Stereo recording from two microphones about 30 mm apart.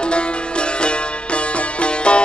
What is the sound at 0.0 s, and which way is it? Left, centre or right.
Music, left.